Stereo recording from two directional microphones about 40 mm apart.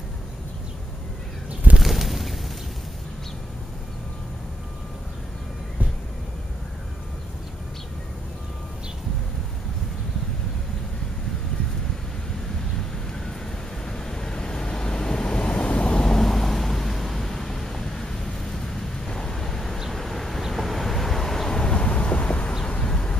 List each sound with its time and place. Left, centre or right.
1.8 s bird: centre
13.8 s vehicle: centre
16.0 s vehicle: centre